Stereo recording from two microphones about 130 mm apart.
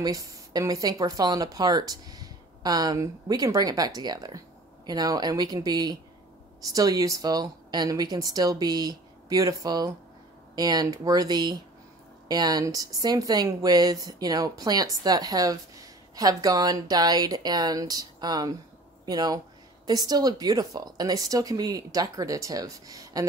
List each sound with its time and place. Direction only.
0.0 s speech: 30° right (ahead or behind)